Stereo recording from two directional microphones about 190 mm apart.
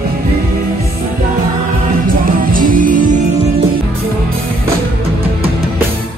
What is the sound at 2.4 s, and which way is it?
Music, 45° right (ahead or behind).